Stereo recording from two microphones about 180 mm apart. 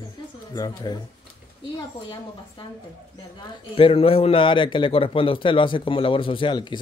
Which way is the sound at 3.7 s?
30° left (ahead or behind).